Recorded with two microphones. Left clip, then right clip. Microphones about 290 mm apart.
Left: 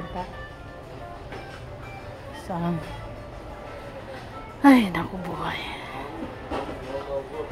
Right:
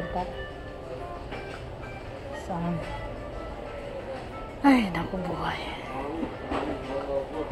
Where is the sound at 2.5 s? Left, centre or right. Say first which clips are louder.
Left 3 dB; left.